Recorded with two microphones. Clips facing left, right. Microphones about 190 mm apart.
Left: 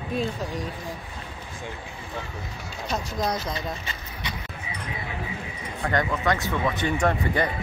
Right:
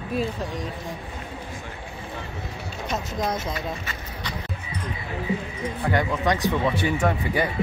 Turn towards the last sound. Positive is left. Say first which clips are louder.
# even
turn(degrees=-5)  # may be behind; listen again after turning